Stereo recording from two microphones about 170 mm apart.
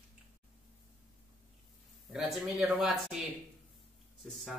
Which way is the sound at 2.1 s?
5° right (ahead or behind).